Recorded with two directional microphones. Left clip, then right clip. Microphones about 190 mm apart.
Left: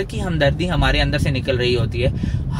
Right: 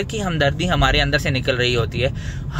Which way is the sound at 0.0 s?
20° right (ahead or behind).